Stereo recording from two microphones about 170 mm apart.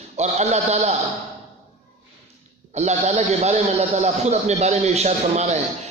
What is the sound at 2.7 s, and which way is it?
A man's voice, 40° right (ahead or behind).